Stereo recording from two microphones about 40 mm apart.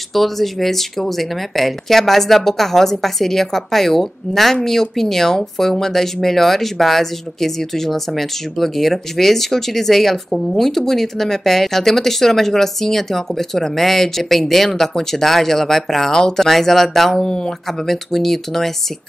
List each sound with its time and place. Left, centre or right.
0.1 s speech: centre
17.6 s speech: centre